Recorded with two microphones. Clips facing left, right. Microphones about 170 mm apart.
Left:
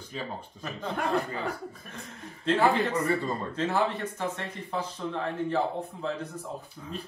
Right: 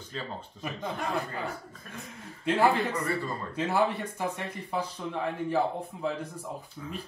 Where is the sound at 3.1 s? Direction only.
20° left (ahead or behind).